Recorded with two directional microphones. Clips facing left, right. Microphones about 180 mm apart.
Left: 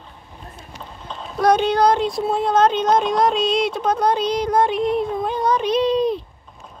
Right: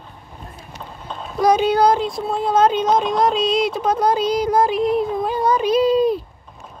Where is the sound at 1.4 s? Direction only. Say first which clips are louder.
Right 1 dB; 5° right (ahead or behind).